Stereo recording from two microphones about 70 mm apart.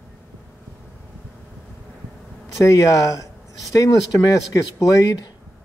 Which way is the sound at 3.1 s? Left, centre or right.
Left.